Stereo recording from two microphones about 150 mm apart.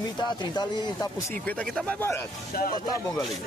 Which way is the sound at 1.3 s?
10° left (ahead or behind).